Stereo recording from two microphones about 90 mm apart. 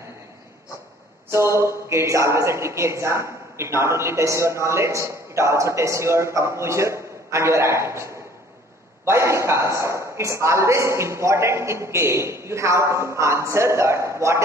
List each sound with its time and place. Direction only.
1.3 s a woman's voice: 30° right (ahead or behind)